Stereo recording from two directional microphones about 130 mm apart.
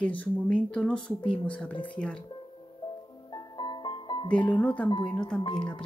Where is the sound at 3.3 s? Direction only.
35° left (ahead or behind).